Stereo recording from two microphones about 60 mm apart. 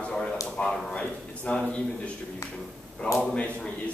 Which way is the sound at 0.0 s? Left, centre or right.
Centre.